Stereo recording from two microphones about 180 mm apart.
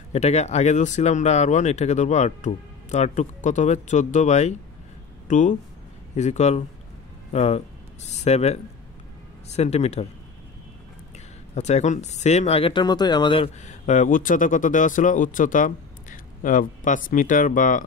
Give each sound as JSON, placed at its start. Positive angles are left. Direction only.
{"t": 0.1, "sound": "speech", "side_deg": 35}
{"t": 11.5, "sound": "speech", "side_deg": 40}
{"t": 13.7, "sound": "speech", "side_deg": 45}